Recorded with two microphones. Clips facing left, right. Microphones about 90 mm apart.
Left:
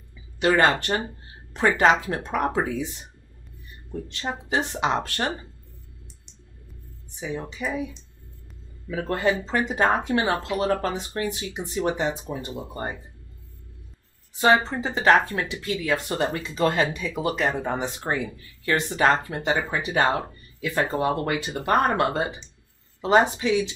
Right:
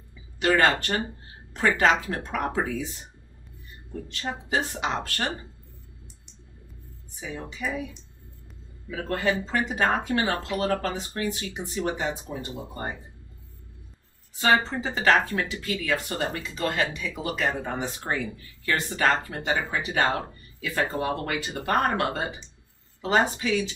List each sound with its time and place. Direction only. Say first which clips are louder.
0.4 s speech: left 2 dB; 20° left (ahead or behind)
4.1 s speech: left 1 dB; 25° left (ahead or behind)
7.2 s speech: left 4 dB; 20° left (ahead or behind)
8.9 s speech: left 3 dB; 20° left (ahead or behind)
14.4 s speech: left 3 dB; 20° left (ahead or behind)